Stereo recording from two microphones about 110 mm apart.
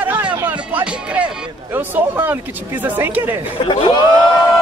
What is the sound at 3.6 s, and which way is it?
Speech, 55° left (ahead or behind).